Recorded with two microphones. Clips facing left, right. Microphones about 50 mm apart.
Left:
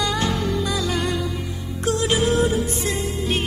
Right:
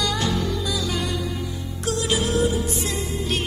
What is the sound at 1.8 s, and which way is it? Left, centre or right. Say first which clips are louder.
Music: left 4 dB; left.